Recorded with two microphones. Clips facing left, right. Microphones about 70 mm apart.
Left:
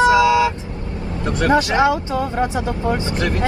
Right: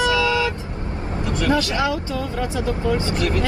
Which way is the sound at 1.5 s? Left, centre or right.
Left.